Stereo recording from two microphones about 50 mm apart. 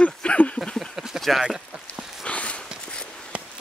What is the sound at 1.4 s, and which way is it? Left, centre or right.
Speech, centre.